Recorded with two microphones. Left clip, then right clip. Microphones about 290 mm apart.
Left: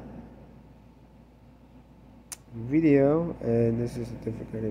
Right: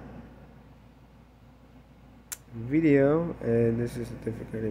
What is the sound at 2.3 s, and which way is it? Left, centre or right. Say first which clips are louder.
Speech: left 1 dB; centre.